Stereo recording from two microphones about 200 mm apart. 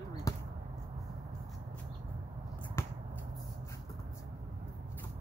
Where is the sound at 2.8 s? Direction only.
10° left (ahead or behind).